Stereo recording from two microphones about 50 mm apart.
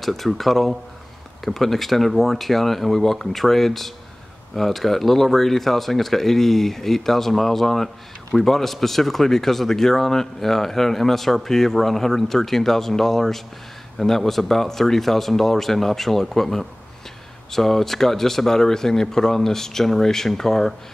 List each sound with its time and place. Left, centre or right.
0.0 s speech: centre